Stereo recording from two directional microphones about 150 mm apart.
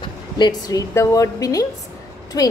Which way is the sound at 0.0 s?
30° left (ahead or behind).